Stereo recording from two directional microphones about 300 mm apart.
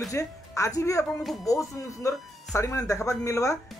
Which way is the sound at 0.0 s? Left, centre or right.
Centre.